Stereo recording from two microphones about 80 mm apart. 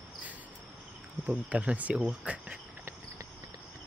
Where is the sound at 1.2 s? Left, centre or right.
Centre.